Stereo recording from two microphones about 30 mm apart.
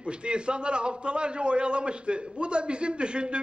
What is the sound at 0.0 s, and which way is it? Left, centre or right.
A man's voice, right.